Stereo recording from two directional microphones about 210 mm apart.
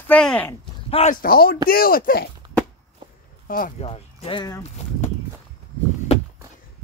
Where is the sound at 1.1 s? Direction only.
45° left (ahead or behind).